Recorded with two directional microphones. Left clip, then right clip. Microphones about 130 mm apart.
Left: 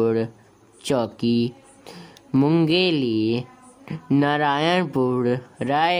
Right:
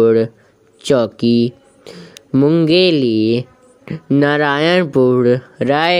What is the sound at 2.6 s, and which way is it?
Speech, 30° right (ahead or behind).